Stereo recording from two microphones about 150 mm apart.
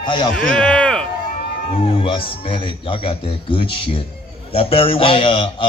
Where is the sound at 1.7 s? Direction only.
35° left (ahead or behind).